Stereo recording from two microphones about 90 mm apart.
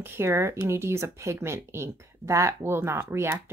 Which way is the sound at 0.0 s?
25° right (ahead or behind).